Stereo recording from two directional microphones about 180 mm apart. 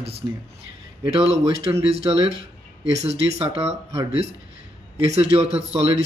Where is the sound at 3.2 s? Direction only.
35° right (ahead or behind).